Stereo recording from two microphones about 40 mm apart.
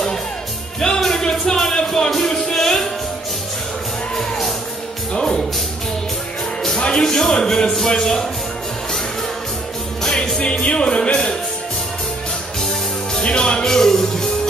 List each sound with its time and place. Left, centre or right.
0.7 s music: centre
5.1 s music: centre
6.9 s speech: centre
10.0 s music: centre
13.1 s music: left